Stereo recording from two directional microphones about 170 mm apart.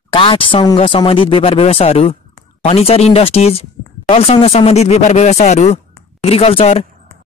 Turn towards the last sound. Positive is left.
turn(degrees=35)  # may be behind; listen again after turning